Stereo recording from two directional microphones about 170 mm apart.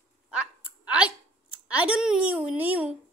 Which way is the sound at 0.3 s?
5° right (ahead or behind).